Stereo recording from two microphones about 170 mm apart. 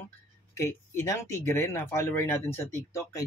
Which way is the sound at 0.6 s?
15° left (ahead or behind).